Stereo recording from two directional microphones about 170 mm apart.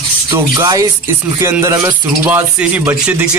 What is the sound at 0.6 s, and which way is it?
Speech, 20° right (ahead or behind).